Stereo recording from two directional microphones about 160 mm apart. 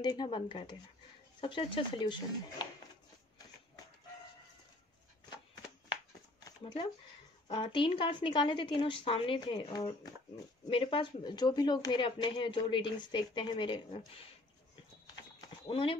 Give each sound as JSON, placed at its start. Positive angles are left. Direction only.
{"t": 0.0, "sound": "a woman's voice", "side_deg": 25}
{"t": 7.4, "sound": "a woman's voice", "side_deg": 30}
{"t": 15.6, "sound": "speech", "side_deg": 35}